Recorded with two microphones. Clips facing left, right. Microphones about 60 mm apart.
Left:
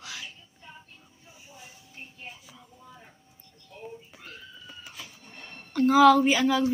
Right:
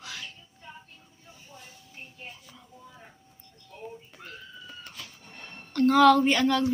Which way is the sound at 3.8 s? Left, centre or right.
Centre.